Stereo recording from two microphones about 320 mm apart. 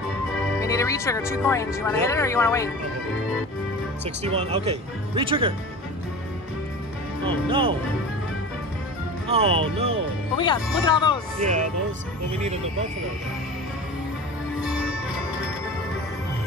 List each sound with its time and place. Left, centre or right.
0.6 s speech: centre
4.0 s speech: centre
7.2 s speech: centre
9.3 s speech: centre
10.3 s speech: centre